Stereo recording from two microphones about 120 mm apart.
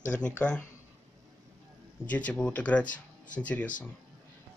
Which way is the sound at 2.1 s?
10° left (ahead or behind).